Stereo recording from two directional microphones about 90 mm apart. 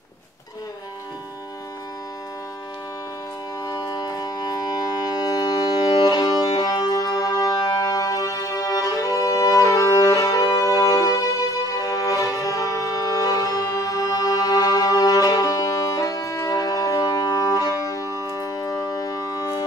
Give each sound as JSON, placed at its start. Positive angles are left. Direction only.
{"t": 3.6, "sound": "music", "side_deg": 45}